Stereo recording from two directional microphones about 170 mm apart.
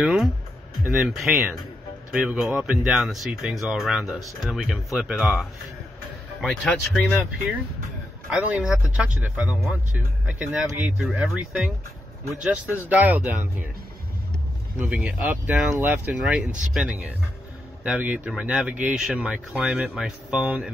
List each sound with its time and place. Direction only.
0.0 s speech: centre (ahead or behind)
7.1 s speech: 10° right (ahead or behind)
9.0 s speech: 5° right (ahead or behind)
14.8 s speech: centre (ahead or behind)